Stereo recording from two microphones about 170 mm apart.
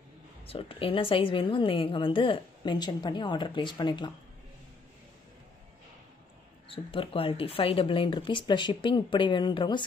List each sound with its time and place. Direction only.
0.5 s a woman's voice: 35° left (ahead or behind)
6.7 s a woman's voice: 30° left (ahead or behind)